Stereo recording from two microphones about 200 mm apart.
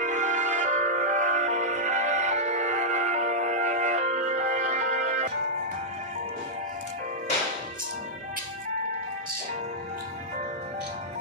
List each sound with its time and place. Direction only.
0.0 s music: 35° right (ahead or behind)